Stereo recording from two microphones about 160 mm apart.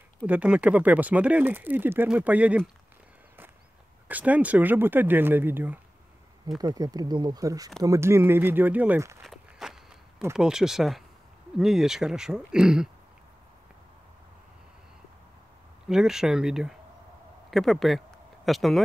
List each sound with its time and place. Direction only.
0.3 s speech: 10° right (ahead or behind)
4.1 s speech: 10° right (ahead or behind)
6.6 s speech: 25° right (ahead or behind)
9.2 s walk: centre (ahead or behind)
10.3 s speech: 5° right (ahead or behind)
15.9 s speech: 5° right (ahead or behind)